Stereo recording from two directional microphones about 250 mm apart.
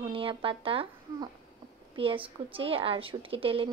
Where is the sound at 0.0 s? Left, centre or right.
Right.